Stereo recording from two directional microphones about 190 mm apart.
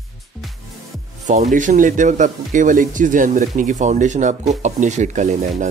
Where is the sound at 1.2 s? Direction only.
40° right (ahead or behind).